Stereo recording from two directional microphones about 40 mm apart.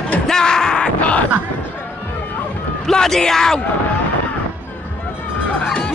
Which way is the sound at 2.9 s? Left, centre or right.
Centre.